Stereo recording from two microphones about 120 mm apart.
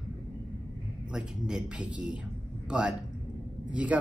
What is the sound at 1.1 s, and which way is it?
Speech, 5° right (ahead or behind).